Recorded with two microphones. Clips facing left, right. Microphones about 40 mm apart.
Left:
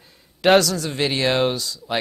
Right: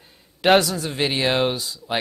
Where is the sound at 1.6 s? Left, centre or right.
Right.